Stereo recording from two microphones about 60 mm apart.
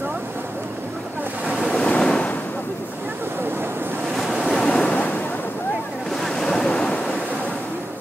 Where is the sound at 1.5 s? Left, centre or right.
Centre.